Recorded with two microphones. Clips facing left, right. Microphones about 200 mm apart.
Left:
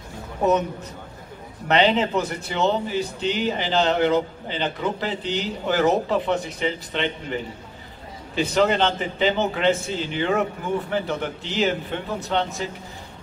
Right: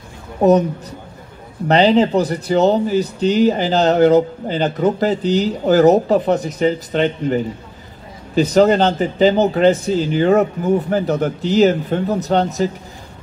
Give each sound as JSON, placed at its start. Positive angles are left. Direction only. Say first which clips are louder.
{"t": 0.4, "sound": "speech", "louder": "right 8 dB", "side_deg": -35}
{"t": 1.7, "sound": "speech", "louder": "right 7 dB", "side_deg": -35}